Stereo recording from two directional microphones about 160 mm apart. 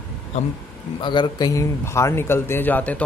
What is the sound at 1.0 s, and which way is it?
Speech, 30° left (ahead or behind).